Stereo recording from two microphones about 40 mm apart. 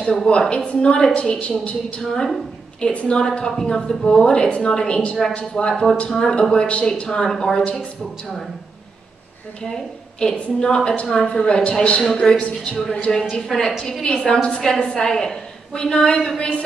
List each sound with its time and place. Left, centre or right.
0.0 s a woman's voice: centre
3.2 s a woman's voice: centre
10.2 s a woman's voice: left
13.4 s a woman's voice: centre